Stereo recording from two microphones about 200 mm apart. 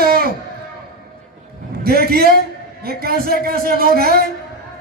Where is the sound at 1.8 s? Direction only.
50° right (ahead or behind).